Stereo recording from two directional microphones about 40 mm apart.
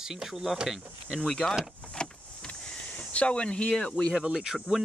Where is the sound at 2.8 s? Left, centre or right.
Left.